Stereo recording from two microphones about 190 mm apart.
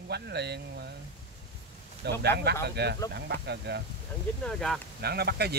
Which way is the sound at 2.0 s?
60° right (ahead or behind).